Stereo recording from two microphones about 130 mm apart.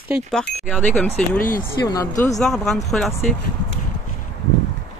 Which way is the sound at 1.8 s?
25° left (ahead or behind).